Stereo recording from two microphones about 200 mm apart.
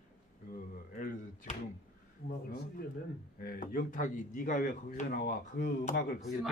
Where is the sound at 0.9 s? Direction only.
40° left (ahead or behind).